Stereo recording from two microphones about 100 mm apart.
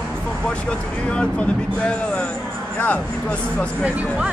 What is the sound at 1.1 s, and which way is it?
Speech, 10° left (ahead or behind).